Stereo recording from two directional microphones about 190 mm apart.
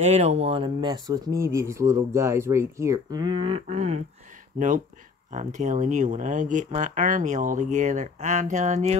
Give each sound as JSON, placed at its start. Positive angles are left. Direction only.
{"t": 0.0, "sound": "speech", "side_deg": -35}